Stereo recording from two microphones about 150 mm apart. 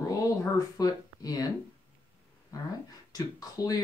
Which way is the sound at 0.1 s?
25° left (ahead or behind).